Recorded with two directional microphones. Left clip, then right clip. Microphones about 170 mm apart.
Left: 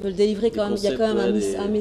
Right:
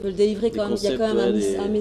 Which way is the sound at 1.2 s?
15° right (ahead or behind).